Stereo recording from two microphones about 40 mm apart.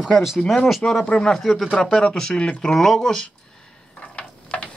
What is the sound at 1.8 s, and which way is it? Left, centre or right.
Speech, centre.